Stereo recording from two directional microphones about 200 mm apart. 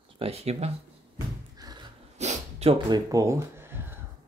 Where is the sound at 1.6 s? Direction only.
20° right (ahead or behind).